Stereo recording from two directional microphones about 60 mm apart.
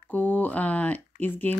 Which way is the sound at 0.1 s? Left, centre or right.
Left.